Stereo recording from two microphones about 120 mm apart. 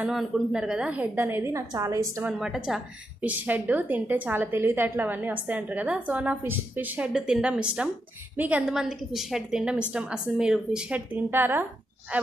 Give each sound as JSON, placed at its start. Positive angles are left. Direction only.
{"t": 0.0, "sound": "a woman's voice", "side_deg": -5}
{"t": 2.3, "sound": "a woman's voice", "side_deg": -5}
{"t": 7.1, "sound": "a woman's voice", "side_deg": -5}
{"t": 11.2, "sound": "a woman's voice", "side_deg": -15}